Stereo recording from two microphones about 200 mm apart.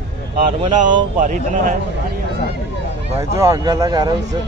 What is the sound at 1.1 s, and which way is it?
Speech, 40° right (ahead or behind).